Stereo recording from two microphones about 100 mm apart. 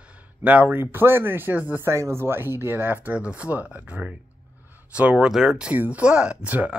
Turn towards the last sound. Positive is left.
turn(degrees=-15)  # may be behind; listen again after turning